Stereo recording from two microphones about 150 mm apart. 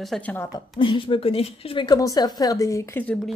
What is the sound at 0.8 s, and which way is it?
A woman's voice, 35° left (ahead or behind).